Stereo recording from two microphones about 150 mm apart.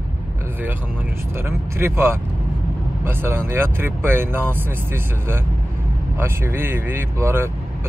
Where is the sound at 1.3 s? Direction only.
15° right (ahead or behind).